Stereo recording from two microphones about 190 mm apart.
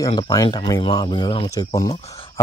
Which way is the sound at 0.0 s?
20° left (ahead or behind).